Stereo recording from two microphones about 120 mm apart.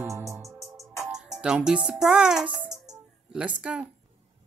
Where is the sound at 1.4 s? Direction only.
5° right (ahead or behind).